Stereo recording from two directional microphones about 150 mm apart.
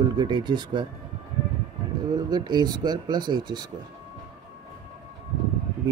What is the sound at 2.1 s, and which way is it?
Speech, 30° right (ahead or behind).